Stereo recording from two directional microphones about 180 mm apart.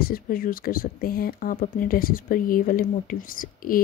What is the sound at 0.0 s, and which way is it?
Speech, 55° left (ahead or behind).